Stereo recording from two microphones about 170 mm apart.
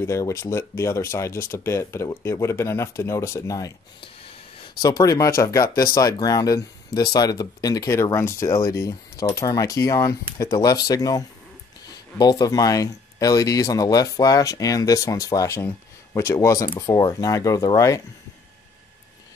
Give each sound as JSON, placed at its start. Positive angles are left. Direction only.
{"t": 0.0, "sound": "speech", "side_deg": 15}
{"t": 4.8, "sound": "speech", "side_deg": 20}